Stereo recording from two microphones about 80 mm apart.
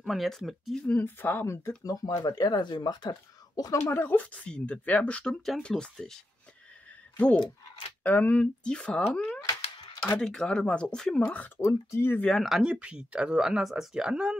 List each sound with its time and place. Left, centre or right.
0.0 s speech: centre
0.9 s speech: left
1.9 s speech: left
3.8 s speech: left; by 6.1 s centre
7.3 s mechanisms: left
8.0 s speech: centre
11.5 s speech: left
12.3 s speech: centre